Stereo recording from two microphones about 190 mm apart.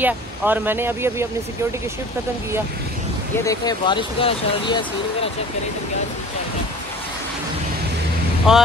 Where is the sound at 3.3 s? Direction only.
15° left (ahead or behind).